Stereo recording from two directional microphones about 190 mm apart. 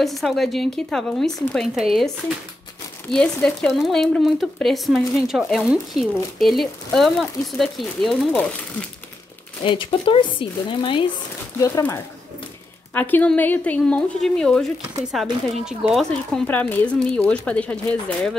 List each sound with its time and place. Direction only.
0.0 s speech: centre (ahead or behind)
9.7 s speech: 25° left (ahead or behind)
11.6 s speech: 15° left (ahead or behind)